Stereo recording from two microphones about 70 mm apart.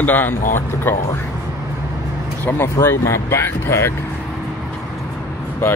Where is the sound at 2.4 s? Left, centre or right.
Left.